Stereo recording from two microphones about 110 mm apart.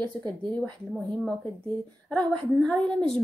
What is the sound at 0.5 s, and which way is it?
Speech, 15° left (ahead or behind).